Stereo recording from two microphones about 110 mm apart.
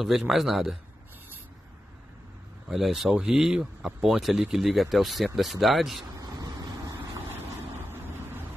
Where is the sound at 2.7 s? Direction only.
Centre (ahead or behind).